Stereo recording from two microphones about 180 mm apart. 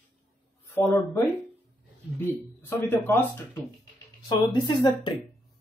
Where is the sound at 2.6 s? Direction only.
15° left (ahead or behind).